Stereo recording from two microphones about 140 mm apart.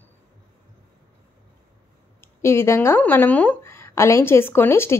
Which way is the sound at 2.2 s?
20° left (ahead or behind).